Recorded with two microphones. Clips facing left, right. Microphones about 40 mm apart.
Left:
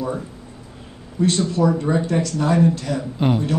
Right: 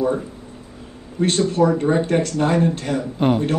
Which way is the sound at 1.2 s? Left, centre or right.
Right.